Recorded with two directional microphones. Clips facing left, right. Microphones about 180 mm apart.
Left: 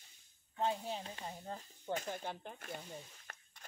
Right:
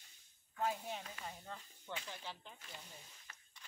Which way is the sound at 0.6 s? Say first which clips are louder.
Left 3 dB; 30° left (ahead or behind).